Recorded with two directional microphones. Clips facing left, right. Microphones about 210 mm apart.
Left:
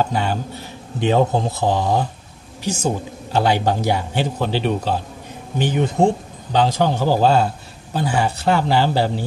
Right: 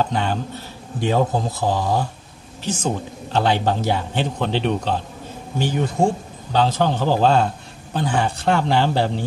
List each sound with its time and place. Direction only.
0.1 s a man's voice: 10° left (ahead or behind)
1.0 s speech: 25° left (ahead or behind)
2.6 s a man's voice: 10° left (ahead or behind)
5.6 s a man's voice: 20° left (ahead or behind)